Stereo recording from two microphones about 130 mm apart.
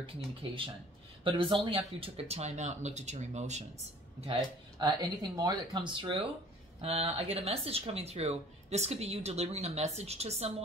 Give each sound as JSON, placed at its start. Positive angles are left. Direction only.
{"t": 0.0, "sound": "speech", "side_deg": -45}
{"t": 4.3, "sound": "speech", "side_deg": -35}
{"t": 6.8, "sound": "speech", "side_deg": -50}